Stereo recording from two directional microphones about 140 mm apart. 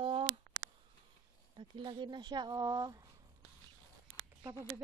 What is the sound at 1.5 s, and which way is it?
Speech, 35° right (ahead or behind).